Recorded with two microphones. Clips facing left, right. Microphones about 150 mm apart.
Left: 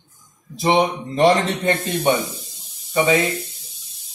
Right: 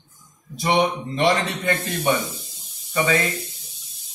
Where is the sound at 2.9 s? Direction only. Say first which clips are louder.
Left 4 dB; 25° left (ahead or behind).